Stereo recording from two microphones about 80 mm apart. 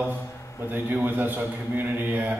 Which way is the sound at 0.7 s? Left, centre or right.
Right.